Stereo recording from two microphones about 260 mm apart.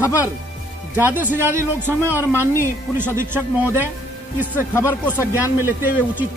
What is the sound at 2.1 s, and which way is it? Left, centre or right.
Speech, centre.